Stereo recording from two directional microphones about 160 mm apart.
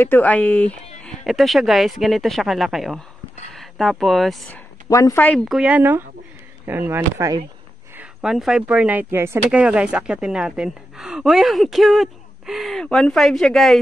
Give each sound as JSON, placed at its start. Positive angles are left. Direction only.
{"t": 0.0, "sound": "a woman's voice", "side_deg": 10}
{"t": 4.8, "sound": "a woman's voice", "side_deg": 20}
{"t": 5.5, "sound": "speech", "side_deg": -5}
{"t": 8.0, "sound": "a woman's voice", "side_deg": -5}